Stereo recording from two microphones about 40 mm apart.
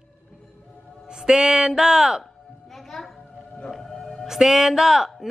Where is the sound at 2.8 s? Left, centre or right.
Centre.